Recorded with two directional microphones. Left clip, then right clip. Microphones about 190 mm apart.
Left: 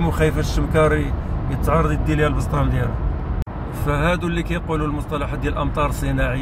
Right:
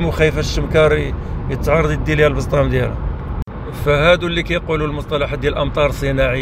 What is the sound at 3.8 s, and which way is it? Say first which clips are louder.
Speech: right 8 dB; 10° right (ahead or behind).